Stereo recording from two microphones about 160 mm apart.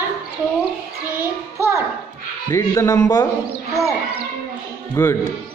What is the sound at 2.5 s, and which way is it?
Speech, 20° left (ahead or behind).